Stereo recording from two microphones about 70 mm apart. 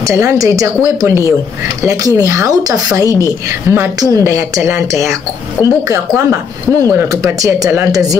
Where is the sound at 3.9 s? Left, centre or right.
Right.